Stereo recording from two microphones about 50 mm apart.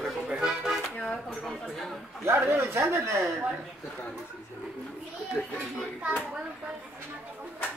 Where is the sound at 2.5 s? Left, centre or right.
Right.